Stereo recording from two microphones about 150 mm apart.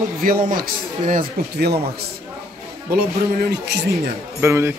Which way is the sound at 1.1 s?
80° right.